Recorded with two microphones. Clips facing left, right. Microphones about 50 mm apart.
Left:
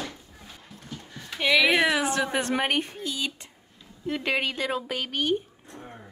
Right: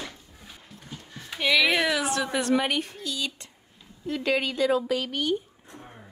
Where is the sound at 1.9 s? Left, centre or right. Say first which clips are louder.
Left 1 dB; left.